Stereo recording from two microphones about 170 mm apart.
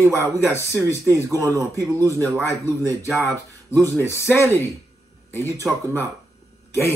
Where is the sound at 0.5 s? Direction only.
15° left (ahead or behind).